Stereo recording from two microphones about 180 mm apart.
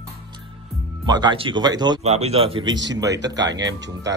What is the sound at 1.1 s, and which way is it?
Speech, 25° right (ahead or behind).